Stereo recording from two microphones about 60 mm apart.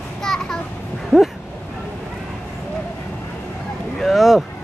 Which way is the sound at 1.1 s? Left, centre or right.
Centre.